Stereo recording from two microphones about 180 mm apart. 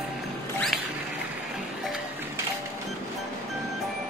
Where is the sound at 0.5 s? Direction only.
Centre (ahead or behind).